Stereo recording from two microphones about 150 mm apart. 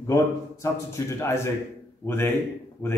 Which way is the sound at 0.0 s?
20° left (ahead or behind).